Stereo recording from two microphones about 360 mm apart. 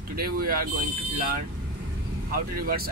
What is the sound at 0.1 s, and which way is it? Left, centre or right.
Speech, right.